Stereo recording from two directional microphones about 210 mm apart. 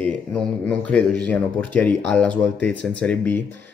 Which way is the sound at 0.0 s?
5° left (ahead or behind).